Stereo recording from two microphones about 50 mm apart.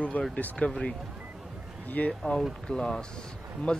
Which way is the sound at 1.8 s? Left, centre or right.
Left.